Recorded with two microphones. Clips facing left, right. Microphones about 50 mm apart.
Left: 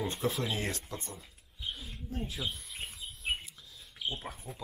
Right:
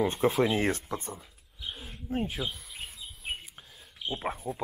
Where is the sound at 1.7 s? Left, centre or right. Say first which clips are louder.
Right 6 dB; right.